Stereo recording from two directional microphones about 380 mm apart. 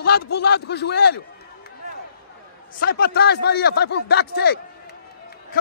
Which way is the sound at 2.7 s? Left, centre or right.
Left.